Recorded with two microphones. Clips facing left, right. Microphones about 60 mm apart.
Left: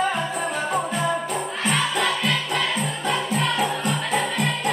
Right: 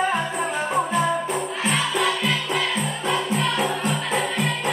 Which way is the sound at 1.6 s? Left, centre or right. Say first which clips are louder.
Left 1 dB; centre.